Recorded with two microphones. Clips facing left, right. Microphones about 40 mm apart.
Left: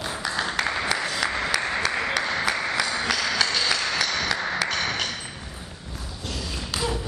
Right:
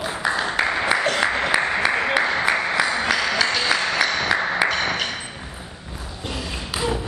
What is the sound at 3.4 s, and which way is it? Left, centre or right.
Music, centre.